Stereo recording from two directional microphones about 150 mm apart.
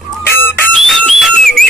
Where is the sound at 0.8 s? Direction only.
Centre (ahead or behind).